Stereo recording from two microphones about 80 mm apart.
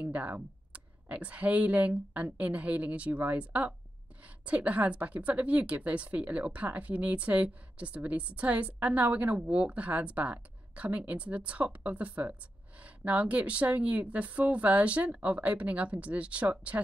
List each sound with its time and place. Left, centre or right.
0.0 s a woman's voice: centre